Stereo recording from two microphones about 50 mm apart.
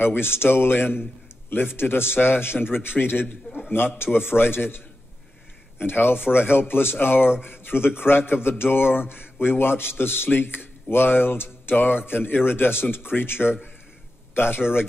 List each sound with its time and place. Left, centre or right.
0.0 s speech: left